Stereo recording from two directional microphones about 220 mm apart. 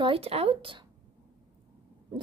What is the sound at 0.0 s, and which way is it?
Speech, 25° right (ahead or behind).